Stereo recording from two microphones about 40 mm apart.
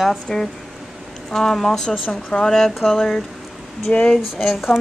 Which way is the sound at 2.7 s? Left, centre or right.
Centre.